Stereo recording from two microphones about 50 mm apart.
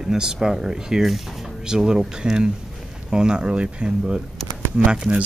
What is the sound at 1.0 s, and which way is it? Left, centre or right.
Speech, centre.